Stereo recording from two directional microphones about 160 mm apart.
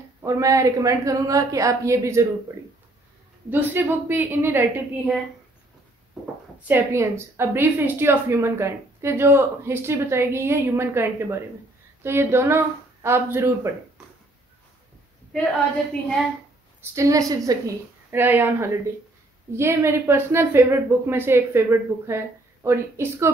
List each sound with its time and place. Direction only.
0.2 s a woman's voice: 20° right (ahead or behind)
6.7 s a woman's voice: 15° right (ahead or behind)
16.8 s a woman's voice: 20° right (ahead or behind)